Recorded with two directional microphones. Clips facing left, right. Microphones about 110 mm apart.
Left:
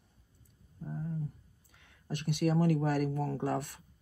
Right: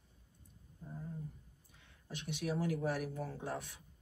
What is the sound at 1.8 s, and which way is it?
Speech, 60° left (ahead or behind).